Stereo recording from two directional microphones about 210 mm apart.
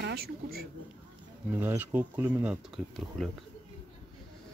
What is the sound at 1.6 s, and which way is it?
Speech, 10° right (ahead or behind).